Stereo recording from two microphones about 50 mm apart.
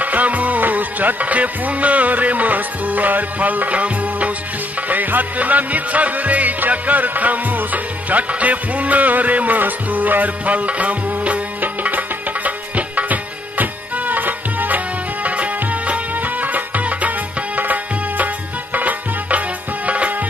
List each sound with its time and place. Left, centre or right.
0.0 s music: right